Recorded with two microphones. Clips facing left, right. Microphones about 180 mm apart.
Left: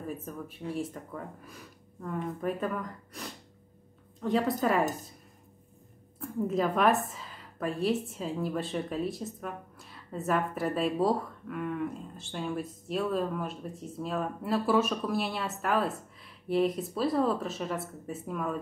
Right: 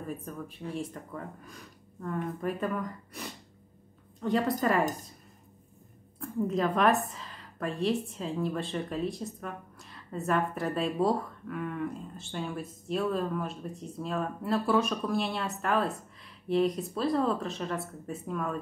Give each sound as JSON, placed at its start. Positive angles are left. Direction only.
{"t": 0.2, "sound": "a woman's voice", "side_deg": 5}
{"t": 6.4, "sound": "a woman's voice", "side_deg": 5}